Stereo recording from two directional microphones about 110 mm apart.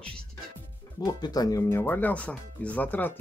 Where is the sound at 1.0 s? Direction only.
35° left (ahead or behind).